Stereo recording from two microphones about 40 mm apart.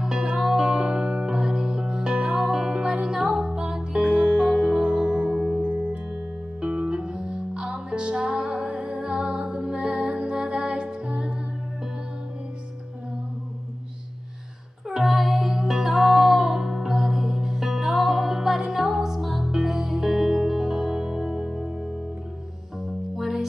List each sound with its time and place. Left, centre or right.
0.0 s music: centre
5.3 s music: centre
5.6 s music: right
6.6 s music: right
14.9 s music: centre